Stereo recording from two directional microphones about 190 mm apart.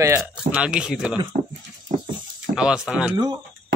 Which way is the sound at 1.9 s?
40° right (ahead or behind).